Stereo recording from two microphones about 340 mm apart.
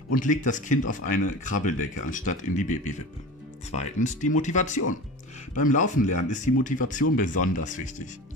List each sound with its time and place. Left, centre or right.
0.1 s speech: left